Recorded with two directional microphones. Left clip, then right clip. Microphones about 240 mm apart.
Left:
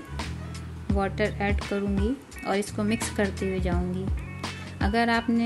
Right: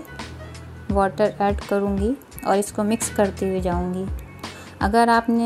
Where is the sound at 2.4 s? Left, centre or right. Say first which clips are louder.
Right 7 dB; centre.